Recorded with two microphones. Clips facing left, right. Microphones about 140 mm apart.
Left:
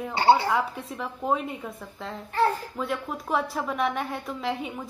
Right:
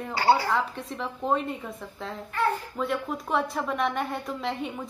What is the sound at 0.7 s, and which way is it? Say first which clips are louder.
A woman's voice: even; centre (ahead or behind).